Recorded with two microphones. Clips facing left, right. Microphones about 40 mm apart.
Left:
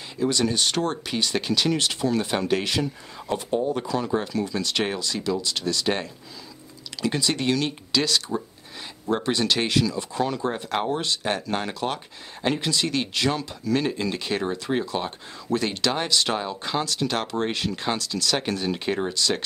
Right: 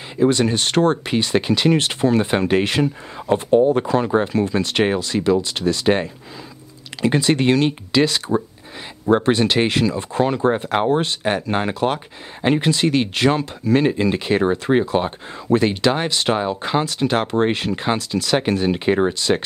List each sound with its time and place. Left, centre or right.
0.2 s speech: right